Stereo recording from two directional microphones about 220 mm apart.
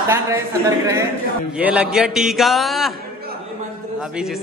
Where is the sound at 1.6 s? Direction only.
5° right (ahead or behind).